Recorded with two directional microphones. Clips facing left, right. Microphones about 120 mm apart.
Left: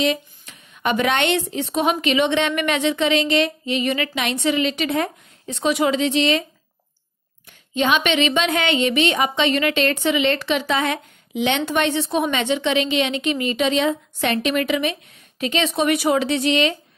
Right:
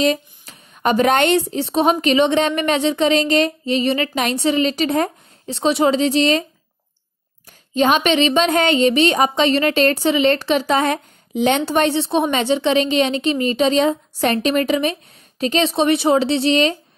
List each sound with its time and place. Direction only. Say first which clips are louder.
0.0 s a woman's voice: right 3 dB; 40° right (ahead or behind)
7.7 s a woman's voice: right 4 dB; 40° right (ahead or behind)